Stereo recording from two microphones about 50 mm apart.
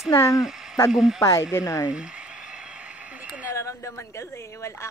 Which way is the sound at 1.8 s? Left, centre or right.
Right.